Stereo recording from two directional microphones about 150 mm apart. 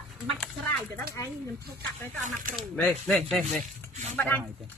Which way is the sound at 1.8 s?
65° right (ahead or behind).